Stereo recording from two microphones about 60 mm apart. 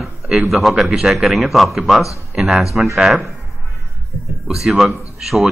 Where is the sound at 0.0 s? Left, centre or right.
Centre.